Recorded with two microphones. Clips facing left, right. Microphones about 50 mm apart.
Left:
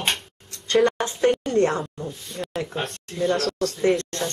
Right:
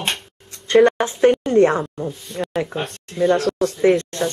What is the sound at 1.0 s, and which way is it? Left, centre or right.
Speech, centre.